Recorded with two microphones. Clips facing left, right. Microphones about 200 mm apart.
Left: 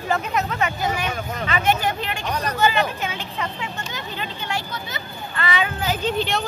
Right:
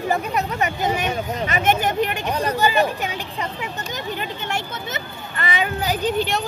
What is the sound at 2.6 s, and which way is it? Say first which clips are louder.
Speech: even; 15° right (ahead or behind).